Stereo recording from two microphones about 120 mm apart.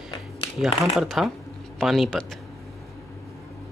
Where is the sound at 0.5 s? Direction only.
Centre (ahead or behind).